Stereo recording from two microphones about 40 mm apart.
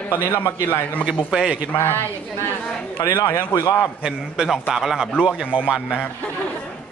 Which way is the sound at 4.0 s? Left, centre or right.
Centre.